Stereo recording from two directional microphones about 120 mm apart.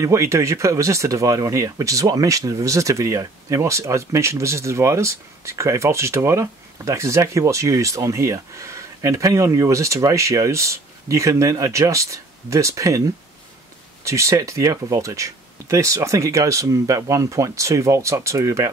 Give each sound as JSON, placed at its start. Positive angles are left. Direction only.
{"t": 0.0, "sound": "speech", "side_deg": -25}